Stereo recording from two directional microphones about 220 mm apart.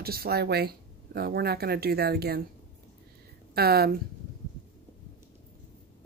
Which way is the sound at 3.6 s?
45° right (ahead or behind).